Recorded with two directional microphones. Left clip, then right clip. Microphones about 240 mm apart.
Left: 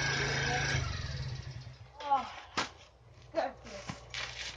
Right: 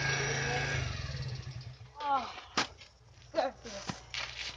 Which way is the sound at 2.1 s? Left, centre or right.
Centre.